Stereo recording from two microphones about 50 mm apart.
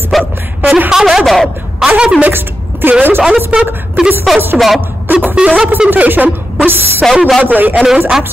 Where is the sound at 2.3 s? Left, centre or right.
Right.